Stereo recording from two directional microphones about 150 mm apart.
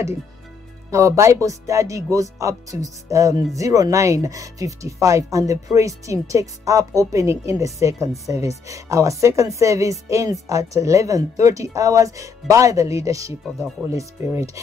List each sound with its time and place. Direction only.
0.8 s speech: 20° right (ahead or behind)